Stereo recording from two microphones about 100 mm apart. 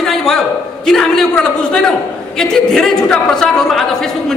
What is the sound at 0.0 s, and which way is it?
A man's voice, 5° left (ahead or behind).